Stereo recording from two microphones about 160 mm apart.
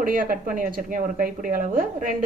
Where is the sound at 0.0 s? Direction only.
60° right (ahead or behind).